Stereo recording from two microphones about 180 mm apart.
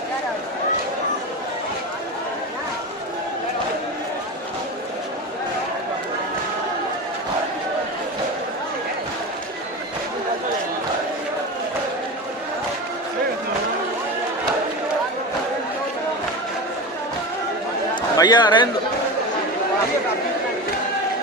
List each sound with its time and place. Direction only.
18.1 s a man's voice: 20° left (ahead or behind)